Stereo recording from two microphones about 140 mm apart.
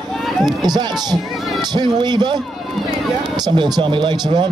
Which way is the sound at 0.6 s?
30° right (ahead or behind).